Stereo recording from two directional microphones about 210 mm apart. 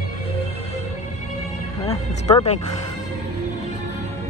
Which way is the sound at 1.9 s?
15° left (ahead or behind).